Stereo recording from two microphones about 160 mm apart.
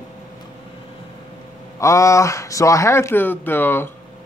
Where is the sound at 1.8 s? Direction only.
20° left (ahead or behind).